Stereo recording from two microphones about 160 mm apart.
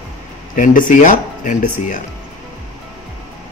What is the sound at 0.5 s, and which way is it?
Speech, 55° left (ahead or behind).